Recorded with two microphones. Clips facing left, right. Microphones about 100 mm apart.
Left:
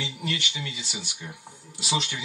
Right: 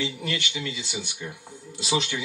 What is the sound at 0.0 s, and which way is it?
Speech, 20° left (ahead or behind).